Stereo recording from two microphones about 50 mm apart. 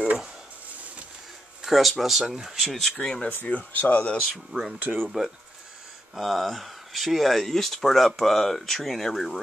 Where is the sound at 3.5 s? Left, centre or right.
Left.